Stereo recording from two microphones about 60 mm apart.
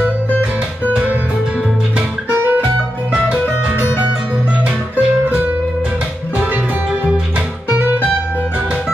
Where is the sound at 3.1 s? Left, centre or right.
Centre.